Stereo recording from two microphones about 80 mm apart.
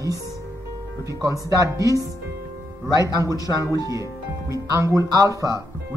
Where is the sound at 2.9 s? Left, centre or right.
Right.